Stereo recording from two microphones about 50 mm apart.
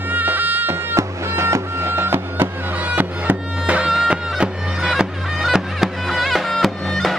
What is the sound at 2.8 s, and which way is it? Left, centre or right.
Music, right.